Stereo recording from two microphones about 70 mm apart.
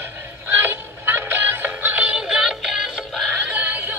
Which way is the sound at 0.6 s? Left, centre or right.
Right.